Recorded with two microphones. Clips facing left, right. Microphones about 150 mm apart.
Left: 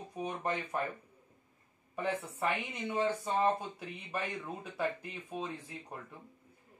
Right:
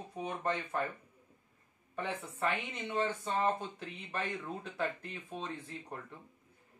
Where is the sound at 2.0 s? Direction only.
10° left (ahead or behind).